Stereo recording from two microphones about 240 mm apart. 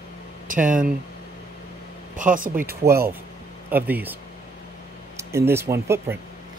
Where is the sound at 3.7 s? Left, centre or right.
Centre.